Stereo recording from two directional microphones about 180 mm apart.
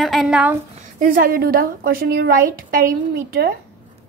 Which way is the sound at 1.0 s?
50° right (ahead or behind).